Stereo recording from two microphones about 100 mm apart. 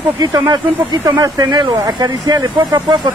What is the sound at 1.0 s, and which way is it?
Speech, 40° right (ahead or behind).